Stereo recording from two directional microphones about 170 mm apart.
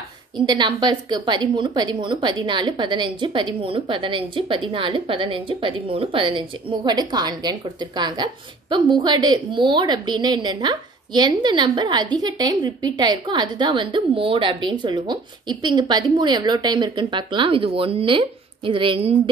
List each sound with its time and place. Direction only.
0.5 s a woman's voice: 25° right (ahead or behind)